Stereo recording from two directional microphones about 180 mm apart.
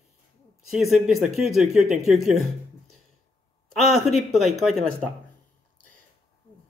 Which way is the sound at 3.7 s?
Centre (ahead or behind).